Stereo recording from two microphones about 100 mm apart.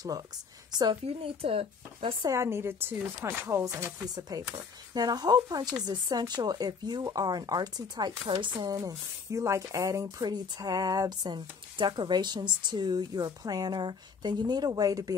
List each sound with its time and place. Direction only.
0.7 s a woman's voice: 45° right (ahead or behind)
1.0 s speech: 75° right (ahead or behind)
2.2 s a woman's voice: 30° right (ahead or behind); by 8.6 s 50° right (ahead or behind)
8.6 s speech: 35° right (ahead or behind)